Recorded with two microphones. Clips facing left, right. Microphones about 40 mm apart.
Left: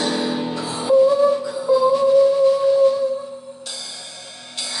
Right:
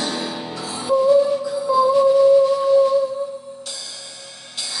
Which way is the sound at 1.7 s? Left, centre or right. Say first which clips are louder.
Left 1 dB; centre.